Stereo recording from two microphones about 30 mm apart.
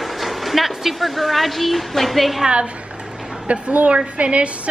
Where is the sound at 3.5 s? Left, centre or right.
Right.